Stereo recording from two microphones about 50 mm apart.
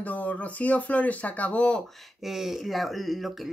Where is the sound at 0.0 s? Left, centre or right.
Left.